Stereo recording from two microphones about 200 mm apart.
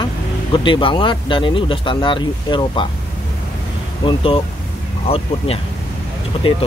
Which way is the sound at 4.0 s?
25° left (ahead or behind).